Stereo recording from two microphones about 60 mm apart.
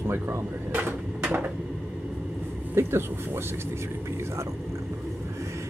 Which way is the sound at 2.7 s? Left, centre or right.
Right.